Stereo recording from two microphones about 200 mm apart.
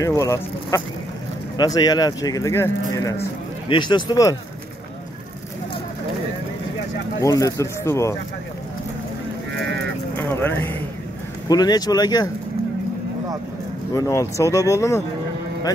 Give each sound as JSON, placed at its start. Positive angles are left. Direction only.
{"t": 0.0, "sound": "speech", "side_deg": 15}
{"t": 7.2, "sound": "speech", "side_deg": 15}
{"t": 10.1, "sound": "speech", "side_deg": 10}
{"t": 13.9, "sound": "speech", "side_deg": 15}